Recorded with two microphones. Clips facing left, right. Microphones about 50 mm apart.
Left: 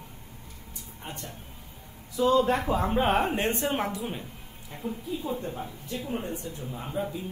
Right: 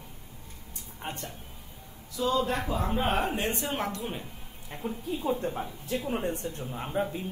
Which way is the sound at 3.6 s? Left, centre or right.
Centre.